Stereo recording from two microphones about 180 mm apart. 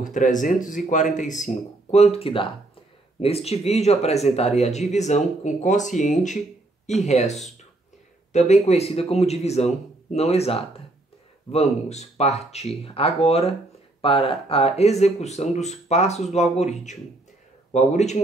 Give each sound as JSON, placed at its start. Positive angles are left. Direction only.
{"t": 0.0, "sound": "speech", "side_deg": 45}
{"t": 11.9, "sound": "speech", "side_deg": 35}